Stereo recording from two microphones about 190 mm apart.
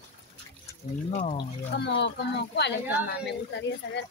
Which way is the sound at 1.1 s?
35° left (ahead or behind).